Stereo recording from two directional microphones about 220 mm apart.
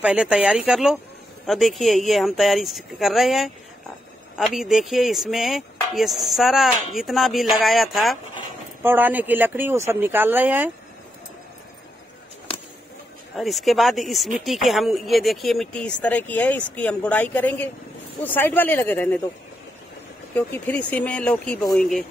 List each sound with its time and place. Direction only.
0.0 s speech: 5° right (ahead or behind)
13.4 s speech: centre (ahead or behind)
20.3 s speech: 10° left (ahead or behind)